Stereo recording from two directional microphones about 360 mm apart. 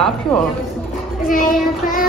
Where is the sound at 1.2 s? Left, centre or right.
Left.